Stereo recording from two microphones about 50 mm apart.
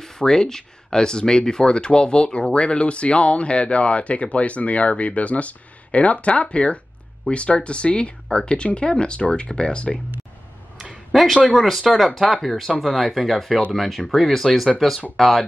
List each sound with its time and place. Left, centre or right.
0.0 s speech: centre
10.8 s a sound: centre
11.4 s speech: centre